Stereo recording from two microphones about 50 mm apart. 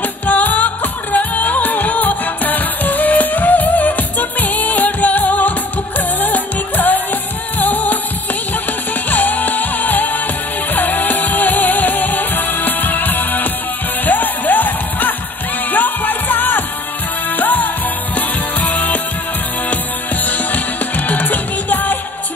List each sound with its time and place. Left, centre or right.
0.3 s music: left
9.1 s music: left
20.5 s music: left